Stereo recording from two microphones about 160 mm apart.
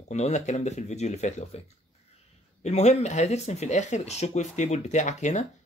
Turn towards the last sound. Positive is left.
turn(degrees=45)  # may be behind; listen again after turning